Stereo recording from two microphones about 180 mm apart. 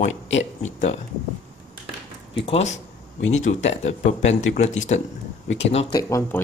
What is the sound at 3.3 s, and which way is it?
Speech, 40° left (ahead or behind).